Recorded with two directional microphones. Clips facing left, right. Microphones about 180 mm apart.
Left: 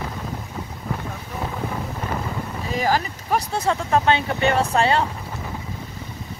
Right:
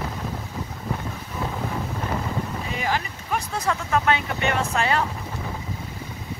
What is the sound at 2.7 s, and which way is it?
Speech, 40° left (ahead or behind).